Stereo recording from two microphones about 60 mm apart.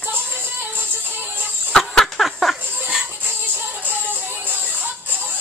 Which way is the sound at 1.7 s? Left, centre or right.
Centre.